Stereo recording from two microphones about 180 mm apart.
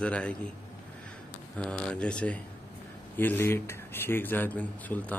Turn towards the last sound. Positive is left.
turn(degrees=10)  # may be behind; listen again after turning